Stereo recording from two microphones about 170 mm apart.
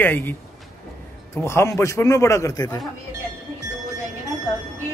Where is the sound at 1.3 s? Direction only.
15° left (ahead or behind).